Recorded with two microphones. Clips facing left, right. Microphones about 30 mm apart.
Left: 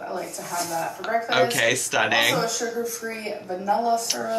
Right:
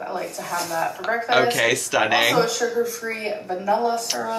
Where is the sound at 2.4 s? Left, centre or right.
Right.